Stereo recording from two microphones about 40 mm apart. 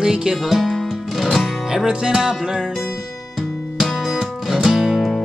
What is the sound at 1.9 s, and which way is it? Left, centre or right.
Music, centre.